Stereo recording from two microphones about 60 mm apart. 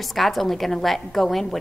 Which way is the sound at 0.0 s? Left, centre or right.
Centre.